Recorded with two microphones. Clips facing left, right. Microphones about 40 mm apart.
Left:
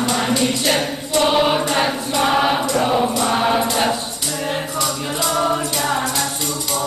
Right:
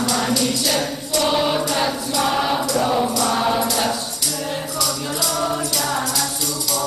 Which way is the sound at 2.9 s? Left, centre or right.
Left.